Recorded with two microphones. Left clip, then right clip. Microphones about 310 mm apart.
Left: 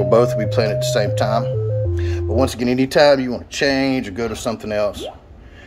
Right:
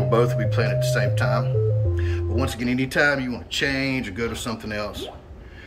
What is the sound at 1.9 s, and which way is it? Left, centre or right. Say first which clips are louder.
Music: left 8 dB; centre.